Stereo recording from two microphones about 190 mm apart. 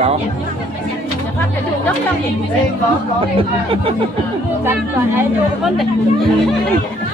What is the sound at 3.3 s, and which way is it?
Speech, 30° right (ahead or behind).